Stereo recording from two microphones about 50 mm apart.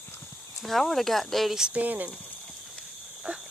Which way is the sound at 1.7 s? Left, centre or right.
Right.